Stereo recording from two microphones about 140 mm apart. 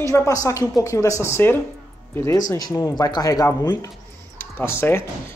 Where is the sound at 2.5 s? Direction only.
25° left (ahead or behind).